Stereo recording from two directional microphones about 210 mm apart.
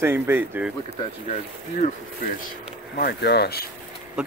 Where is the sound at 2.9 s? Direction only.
50° left (ahead or behind).